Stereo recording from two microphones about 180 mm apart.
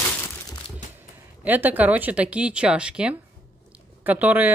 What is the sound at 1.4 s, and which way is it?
A woman's voice, 10° right (ahead or behind).